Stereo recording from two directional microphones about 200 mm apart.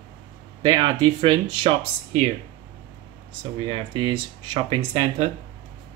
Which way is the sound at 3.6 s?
25° right (ahead or behind).